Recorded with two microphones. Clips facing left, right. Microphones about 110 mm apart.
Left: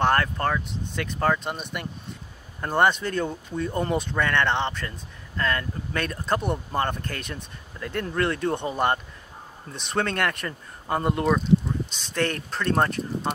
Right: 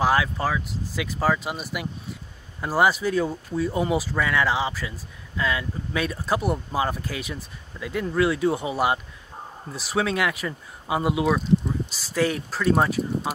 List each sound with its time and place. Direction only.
0.0 s speech: 5° right (ahead or behind)